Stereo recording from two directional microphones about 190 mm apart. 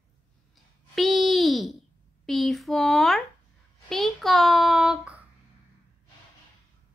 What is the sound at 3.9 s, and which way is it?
Child singing, centre (ahead or behind).